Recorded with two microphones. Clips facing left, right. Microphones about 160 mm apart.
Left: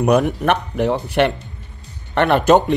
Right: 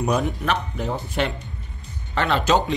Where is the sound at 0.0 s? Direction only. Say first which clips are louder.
Left 7 dB; 65° left (ahead or behind).